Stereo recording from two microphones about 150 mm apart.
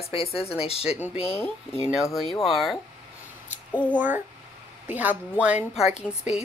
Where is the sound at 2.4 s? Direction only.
Centre (ahead or behind).